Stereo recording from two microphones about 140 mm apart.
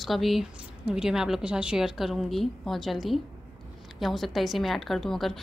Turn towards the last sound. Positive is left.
turn(degrees=0)  # may be behind; listen again after turning